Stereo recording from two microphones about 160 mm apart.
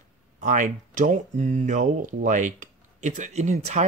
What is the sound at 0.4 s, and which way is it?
Speech, 50° right (ahead or behind).